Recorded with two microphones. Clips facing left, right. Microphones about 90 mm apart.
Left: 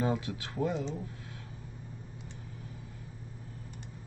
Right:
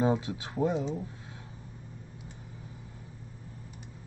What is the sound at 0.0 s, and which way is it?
Speech, 20° right (ahead or behind).